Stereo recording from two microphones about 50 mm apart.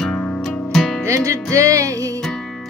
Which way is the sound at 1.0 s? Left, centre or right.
Right.